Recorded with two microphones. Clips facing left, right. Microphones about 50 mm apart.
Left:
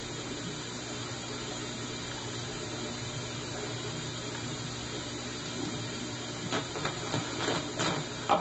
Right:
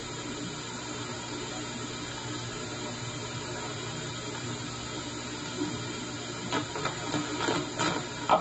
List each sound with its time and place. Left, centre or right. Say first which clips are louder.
6.5 s printer: right 2 dB; right